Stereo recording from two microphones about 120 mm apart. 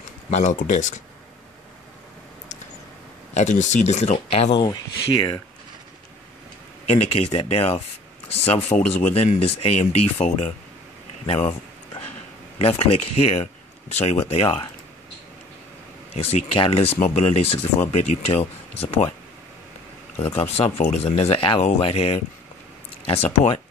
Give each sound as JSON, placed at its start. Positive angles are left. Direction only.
{"t": 0.3, "sound": "speech", "side_deg": 90}
{"t": 3.3, "sound": "speech", "side_deg": 85}
{"t": 4.6, "sound": "speech", "side_deg": 35}
{"t": 6.9, "sound": "speech", "side_deg": 55}
{"t": 16.2, "sound": "speech", "side_deg": 55}
{"t": 20.5, "sound": "speech", "side_deg": 60}